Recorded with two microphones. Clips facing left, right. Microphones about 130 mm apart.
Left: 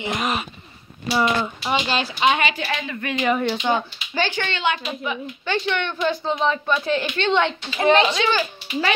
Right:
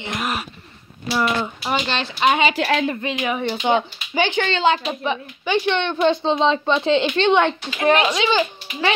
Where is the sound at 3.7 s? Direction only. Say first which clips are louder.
Right 3 dB; 20° right (ahead or behind).